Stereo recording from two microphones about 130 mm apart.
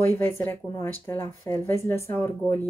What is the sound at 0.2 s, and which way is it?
Speech, 15° left (ahead or behind).